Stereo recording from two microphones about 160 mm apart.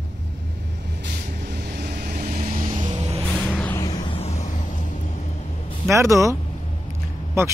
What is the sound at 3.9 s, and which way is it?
Vehicle, 40° left (ahead or behind).